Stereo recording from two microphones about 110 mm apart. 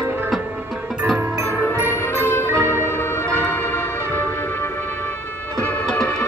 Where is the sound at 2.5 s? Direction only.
25° right (ahead or behind).